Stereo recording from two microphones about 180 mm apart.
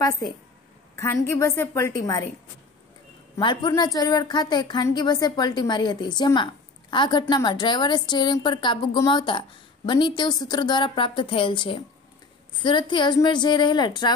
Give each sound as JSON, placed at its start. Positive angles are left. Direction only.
{"t": 0.9, "sound": "a woman's voice", "side_deg": 15}
{"t": 3.3, "sound": "a woman's voice", "side_deg": 25}